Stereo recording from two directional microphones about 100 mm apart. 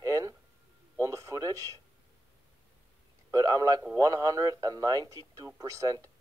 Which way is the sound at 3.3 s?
40° right (ahead or behind).